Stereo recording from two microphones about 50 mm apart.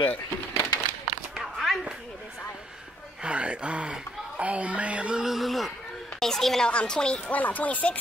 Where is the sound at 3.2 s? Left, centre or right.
Right.